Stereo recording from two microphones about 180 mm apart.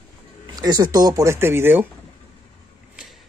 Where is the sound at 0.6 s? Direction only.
20° right (ahead or behind).